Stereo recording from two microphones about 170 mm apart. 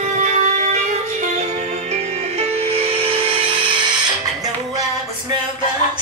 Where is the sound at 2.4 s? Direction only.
35° right (ahead or behind).